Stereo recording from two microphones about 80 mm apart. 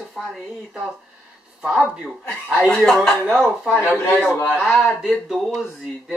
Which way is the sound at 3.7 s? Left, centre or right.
Left.